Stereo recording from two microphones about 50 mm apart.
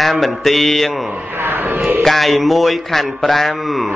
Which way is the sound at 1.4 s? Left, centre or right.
Right.